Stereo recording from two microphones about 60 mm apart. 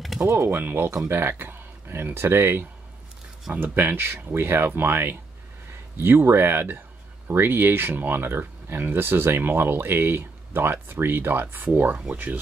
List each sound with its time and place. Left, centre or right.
0.3 s speech: right
0.6 s speech: right